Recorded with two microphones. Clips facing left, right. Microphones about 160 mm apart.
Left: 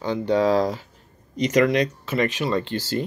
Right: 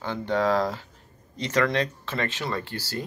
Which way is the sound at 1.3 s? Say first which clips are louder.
Left 6 dB; 15° left (ahead or behind).